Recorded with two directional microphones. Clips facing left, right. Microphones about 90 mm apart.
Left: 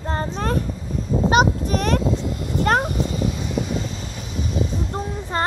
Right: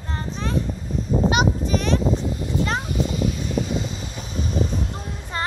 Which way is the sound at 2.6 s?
50° left (ahead or behind).